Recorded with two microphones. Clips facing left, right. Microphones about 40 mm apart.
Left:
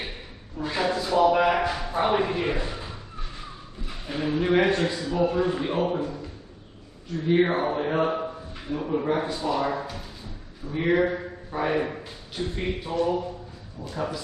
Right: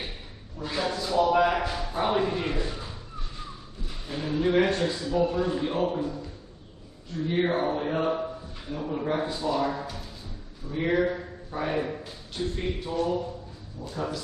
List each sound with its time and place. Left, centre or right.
0.6 s a sound: centre
3.8 s a man's voice: left
7.2 s a man's voice: left